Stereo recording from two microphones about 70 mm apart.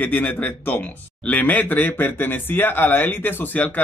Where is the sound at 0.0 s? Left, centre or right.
Left.